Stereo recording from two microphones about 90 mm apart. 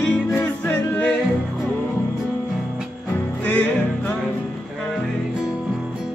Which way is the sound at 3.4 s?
15° left (ahead or behind).